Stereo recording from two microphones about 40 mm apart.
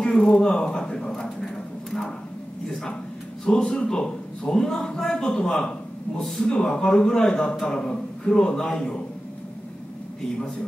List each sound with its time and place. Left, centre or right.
0.0 s a man's voice: centre
1.4 s a sound: centre
3.4 s a man's voice: left